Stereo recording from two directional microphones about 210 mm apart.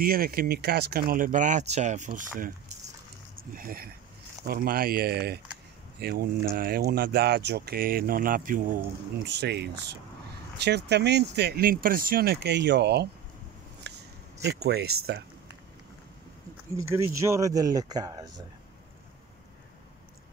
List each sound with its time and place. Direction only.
0.0 s speech: 45° right (ahead or behind)
3.5 s speech: 45° right (ahead or behind)
9.2 s speech: 50° right (ahead or behind)
13.9 s a sound: 55° right (ahead or behind)
14.4 s speech: 50° right (ahead or behind)
16.7 s speech: 15° right (ahead or behind)